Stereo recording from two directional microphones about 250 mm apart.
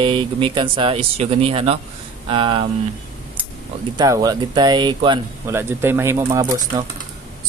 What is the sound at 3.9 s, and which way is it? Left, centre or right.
Speech, centre.